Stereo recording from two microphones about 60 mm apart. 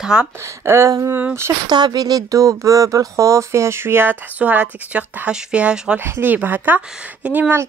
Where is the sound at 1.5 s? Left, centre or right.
Right.